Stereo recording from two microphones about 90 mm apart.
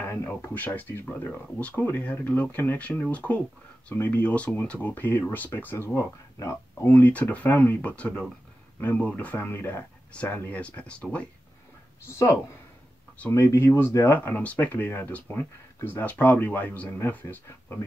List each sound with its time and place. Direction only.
0.0 s speech: 25° left (ahead or behind)
7.1 s speech: 15° left (ahead or behind)
13.3 s speech: 30° left (ahead or behind)